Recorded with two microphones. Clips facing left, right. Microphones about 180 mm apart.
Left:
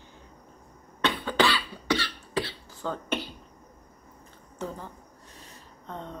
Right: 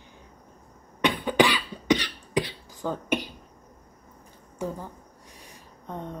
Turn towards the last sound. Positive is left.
turn(degrees=-10)  # may be behind; listen again after turning